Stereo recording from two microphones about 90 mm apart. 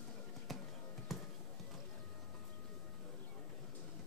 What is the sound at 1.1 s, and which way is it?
Basketball bounce, centre (ahead or behind).